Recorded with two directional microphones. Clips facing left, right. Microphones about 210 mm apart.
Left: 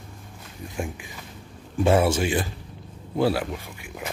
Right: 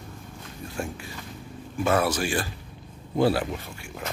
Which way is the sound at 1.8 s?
25° left (ahead or behind).